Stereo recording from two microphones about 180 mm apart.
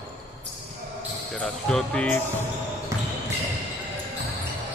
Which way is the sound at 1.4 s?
5° left (ahead or behind).